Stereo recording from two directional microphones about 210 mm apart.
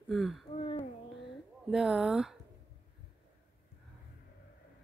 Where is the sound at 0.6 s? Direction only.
30° left (ahead or behind).